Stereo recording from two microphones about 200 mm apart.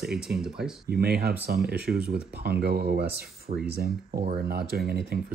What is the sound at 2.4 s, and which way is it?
Speech, 55° right (ahead or behind).